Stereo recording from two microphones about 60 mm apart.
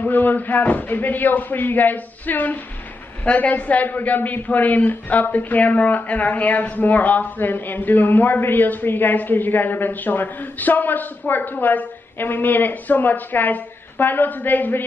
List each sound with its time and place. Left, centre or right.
0.0 s a man's voice: left